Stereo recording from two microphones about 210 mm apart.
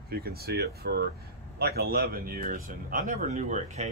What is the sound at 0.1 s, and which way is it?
Speech, 45° right (ahead or behind).